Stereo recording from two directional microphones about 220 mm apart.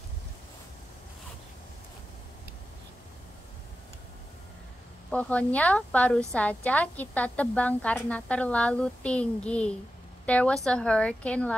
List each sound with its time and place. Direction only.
5.1 s a woman's voice: 5° left (ahead or behind)